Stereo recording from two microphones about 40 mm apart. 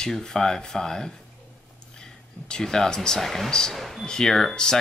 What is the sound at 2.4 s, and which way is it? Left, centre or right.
Speech, centre.